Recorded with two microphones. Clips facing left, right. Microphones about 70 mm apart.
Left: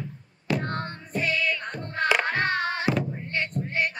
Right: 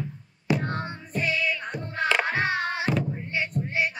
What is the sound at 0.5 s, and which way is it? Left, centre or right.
Music, centre.